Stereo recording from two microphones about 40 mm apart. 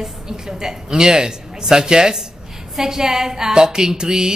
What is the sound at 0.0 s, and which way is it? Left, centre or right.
A woman's voice, centre.